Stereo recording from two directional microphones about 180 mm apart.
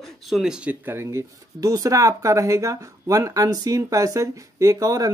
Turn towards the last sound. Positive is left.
turn(degrees=-20)  # may be behind; listen again after turning